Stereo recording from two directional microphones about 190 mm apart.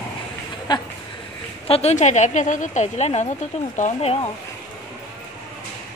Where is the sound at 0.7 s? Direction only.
20° left (ahead or behind).